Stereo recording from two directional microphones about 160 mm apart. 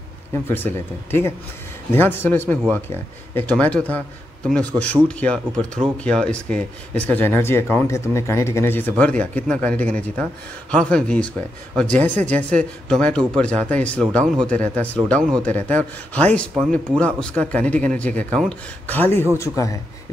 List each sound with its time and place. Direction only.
0.3 s a man's voice: 15° left (ahead or behind)